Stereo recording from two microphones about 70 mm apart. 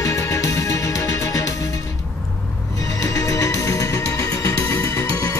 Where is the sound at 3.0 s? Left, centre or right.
Left.